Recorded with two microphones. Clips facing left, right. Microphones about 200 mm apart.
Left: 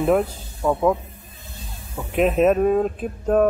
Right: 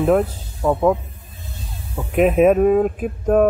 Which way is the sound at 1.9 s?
10° right (ahead or behind).